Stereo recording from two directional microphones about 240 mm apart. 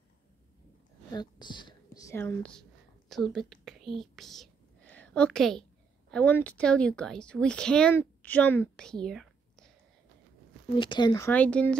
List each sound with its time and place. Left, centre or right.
1.1 s whispering: centre
6.1 s speech: centre
10.8 s speech: centre